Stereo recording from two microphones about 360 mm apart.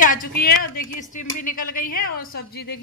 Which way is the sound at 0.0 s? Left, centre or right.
Left.